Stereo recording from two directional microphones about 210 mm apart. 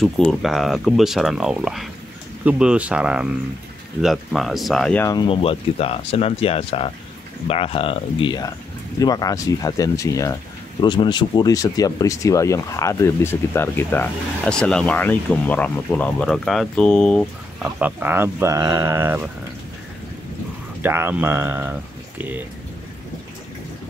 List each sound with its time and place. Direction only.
0.0 s speech: centre (ahead or behind)
5.0 s speech: 20° left (ahead or behind); by 17.3 s 5° left (ahead or behind)
17.7 s speech: 10° right (ahead or behind)
20.8 s speech: 10° right (ahead or behind)